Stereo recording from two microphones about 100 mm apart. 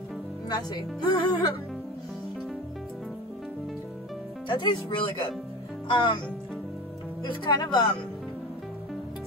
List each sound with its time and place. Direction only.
0.5 s a woman's voice: 45° left (ahead or behind)
4.5 s a woman's voice: 50° left (ahead or behind)
7.2 s a woman's voice: 45° left (ahead or behind)